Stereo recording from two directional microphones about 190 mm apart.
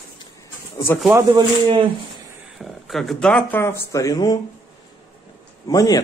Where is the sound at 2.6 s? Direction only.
Centre (ahead or behind); by 4.4 s 20° left (ahead or behind).